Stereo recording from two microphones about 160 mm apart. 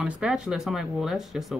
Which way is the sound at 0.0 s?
5° right (ahead or behind).